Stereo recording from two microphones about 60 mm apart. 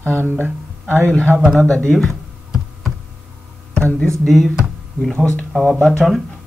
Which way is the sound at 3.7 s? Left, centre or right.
Centre.